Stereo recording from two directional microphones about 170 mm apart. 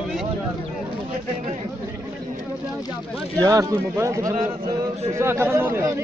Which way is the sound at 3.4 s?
20° right (ahead or behind).